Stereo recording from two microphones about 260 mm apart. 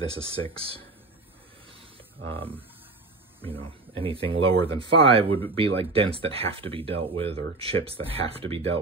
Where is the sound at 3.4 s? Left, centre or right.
Right.